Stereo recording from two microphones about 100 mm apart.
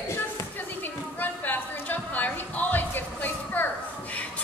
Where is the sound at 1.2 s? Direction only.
20° left (ahead or behind).